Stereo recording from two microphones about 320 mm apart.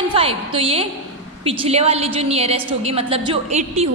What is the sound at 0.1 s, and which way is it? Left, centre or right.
A woman's voice, centre.